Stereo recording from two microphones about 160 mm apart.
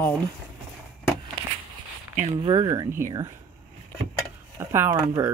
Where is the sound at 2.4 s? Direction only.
35° right (ahead or behind).